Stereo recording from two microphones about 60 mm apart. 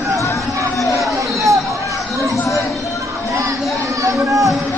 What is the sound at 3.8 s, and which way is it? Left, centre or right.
Run, right.